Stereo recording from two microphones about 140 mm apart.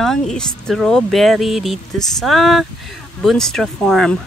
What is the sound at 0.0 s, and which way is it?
Speech, 5° left (ahead or behind).